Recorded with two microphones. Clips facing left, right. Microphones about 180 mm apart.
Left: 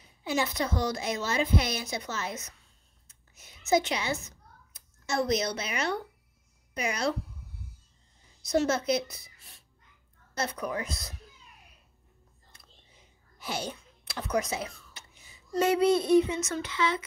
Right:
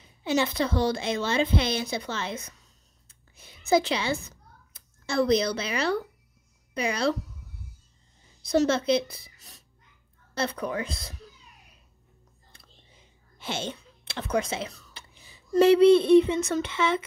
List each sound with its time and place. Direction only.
0.4 s speech: 30° right (ahead or behind)
6.7 s child singing: 30° right (ahead or behind)
8.4 s a woman's voice: 30° right (ahead or behind)
9.1 s a sound: 35° right (ahead or behind)
10.3 s speech: 30° right (ahead or behind)
13.4 s a sound: 25° right (ahead or behind)
14.3 s a woman's voice: 25° right (ahead or behind)
14.7 s whispering: 35° right (ahead or behind)
15.6 s child singing: 30° right (ahead or behind)
16.6 s a woman's voice: 25° right (ahead or behind)